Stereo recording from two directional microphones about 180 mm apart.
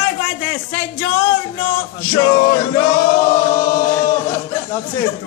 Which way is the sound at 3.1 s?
50° left (ahead or behind).